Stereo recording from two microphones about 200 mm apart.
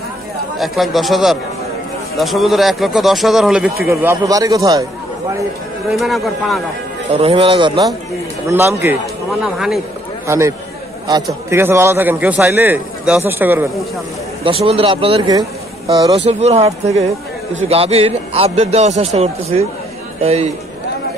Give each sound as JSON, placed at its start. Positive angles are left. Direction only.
{"t": 0.6, "sound": "speech", "side_deg": 0}
{"t": 3.8, "sound": "a man's voice", "side_deg": -15}
{"t": 5.9, "sound": "speech", "side_deg": 0}
{"t": 7.2, "sound": "speech", "side_deg": -30}
{"t": 8.5, "sound": "a man's voice", "side_deg": -10}
{"t": 9.4, "sound": "speech", "side_deg": 0}
{"t": 10.2, "sound": "a man's voice", "side_deg": -15}
{"t": 11.5, "sound": "a man's voice", "side_deg": -15}
{"t": 14.4, "sound": "a man's voice", "side_deg": -30}